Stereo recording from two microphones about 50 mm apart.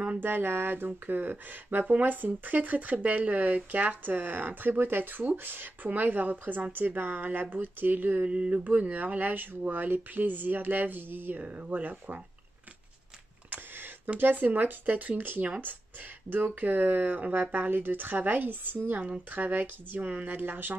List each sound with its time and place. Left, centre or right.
0.2 s speech: right
8.3 s a sound: right
8.6 s speech: right
14.2 s speech: right
16.5 s speech: right